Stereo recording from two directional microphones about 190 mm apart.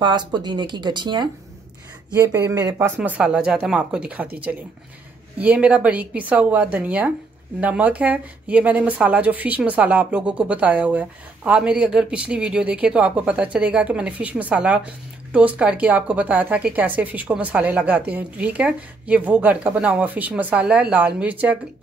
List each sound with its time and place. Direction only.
0.0 s speech: 25° right (ahead or behind); by 4.3 s 5° right (ahead or behind)
5.4 s speech: 5° right (ahead or behind)